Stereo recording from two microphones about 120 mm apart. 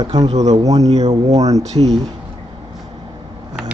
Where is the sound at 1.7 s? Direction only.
65° right (ahead or behind).